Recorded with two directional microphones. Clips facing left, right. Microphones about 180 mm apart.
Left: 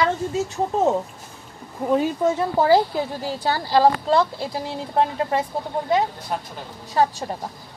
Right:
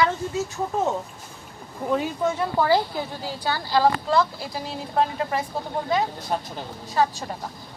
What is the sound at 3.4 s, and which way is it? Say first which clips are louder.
Speech: left 3 dB; 35° left (ahead or behind).